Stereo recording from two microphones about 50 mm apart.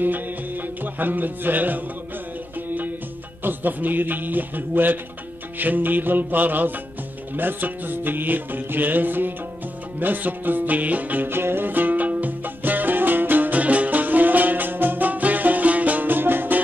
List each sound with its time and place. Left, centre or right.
0.0 s music: right
3.4 s music: right
11.2 s music: right